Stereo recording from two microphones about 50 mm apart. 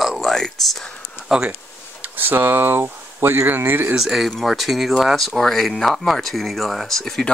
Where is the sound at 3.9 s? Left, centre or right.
Centre.